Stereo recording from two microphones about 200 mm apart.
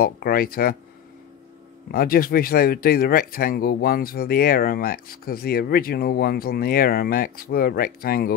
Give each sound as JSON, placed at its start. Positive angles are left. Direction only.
{"t": 0.0, "sound": "speech", "side_deg": 50}
{"t": 1.9, "sound": "speech", "side_deg": 50}